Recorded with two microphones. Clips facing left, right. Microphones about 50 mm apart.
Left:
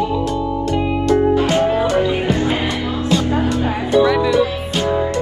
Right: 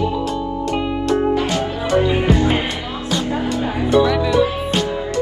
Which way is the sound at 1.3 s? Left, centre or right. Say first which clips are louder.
Left 5 dB; left.